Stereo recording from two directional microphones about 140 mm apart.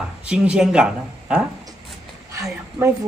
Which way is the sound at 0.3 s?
5° right (ahead or behind).